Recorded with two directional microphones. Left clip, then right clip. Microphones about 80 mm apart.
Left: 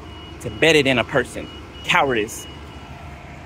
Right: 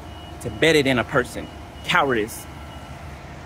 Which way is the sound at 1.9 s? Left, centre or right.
Right.